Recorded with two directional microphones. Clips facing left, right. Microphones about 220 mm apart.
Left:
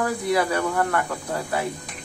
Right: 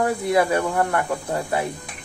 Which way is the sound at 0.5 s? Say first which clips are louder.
Right 2 dB; 20° right (ahead or behind).